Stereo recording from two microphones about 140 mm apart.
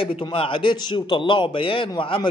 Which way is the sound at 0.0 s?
40° left (ahead or behind).